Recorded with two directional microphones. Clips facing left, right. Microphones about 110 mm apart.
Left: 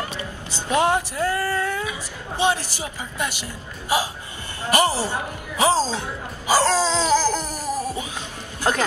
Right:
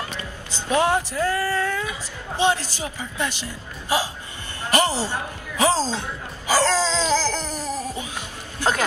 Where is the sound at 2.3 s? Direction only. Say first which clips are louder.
Right 1 dB; 15° left (ahead or behind).